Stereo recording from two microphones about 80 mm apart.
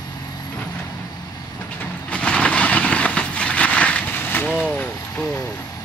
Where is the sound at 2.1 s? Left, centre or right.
Centre.